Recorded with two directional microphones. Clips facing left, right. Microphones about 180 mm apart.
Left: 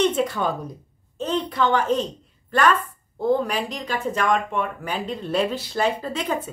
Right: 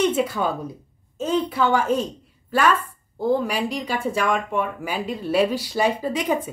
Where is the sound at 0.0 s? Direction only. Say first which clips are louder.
Even; 5° right (ahead or behind).